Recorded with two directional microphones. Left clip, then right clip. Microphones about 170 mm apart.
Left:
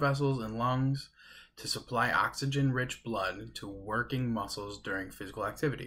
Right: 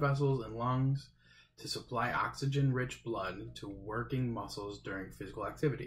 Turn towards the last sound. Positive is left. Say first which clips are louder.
# left 4 dB
turn(degrees=15)  # may be behind; listen again after turning